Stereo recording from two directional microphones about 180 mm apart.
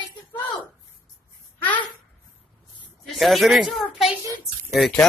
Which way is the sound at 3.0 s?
Centre (ahead or behind).